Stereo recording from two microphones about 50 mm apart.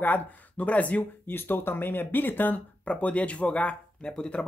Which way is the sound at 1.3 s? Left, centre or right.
Left.